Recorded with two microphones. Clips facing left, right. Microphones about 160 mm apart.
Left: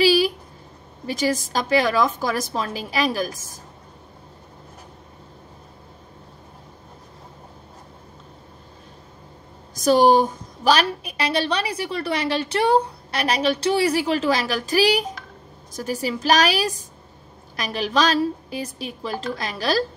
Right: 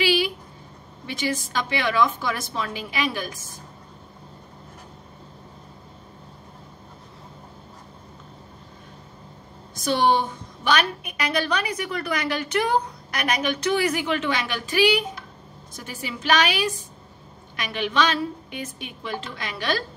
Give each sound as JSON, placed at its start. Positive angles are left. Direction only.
{"t": 0.0, "sound": "a sound", "side_deg": 40}
{"t": 1.0, "sound": "a woman's voice", "side_deg": 40}
{"t": 9.8, "sound": "a woman's voice", "side_deg": 40}